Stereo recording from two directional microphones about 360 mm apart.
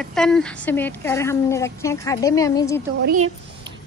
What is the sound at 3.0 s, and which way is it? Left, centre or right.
Speech, right.